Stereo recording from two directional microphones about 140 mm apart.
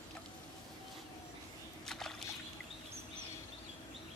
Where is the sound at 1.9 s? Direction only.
5° left (ahead or behind).